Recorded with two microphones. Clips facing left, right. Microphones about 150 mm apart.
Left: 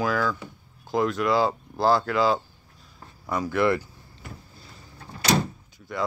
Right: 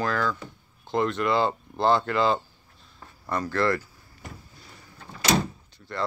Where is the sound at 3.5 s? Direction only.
15° left (ahead or behind).